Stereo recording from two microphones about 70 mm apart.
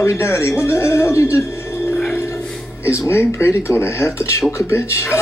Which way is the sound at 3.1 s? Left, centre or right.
Left.